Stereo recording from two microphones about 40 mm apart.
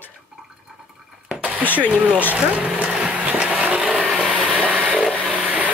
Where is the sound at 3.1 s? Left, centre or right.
Right.